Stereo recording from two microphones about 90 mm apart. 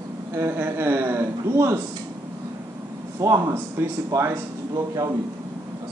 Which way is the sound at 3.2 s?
30° right (ahead or behind).